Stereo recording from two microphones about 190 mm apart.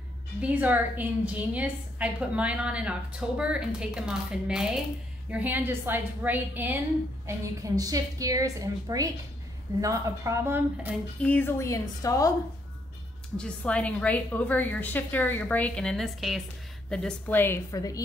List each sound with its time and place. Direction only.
0.4 s a woman's voice: 10° right (ahead or behind)
11.2 s a woman's voice: 10° left (ahead or behind)
13.4 s a woman's voice: 5° left (ahead or behind)